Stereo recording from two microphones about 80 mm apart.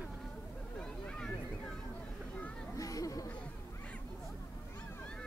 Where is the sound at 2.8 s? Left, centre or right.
Left.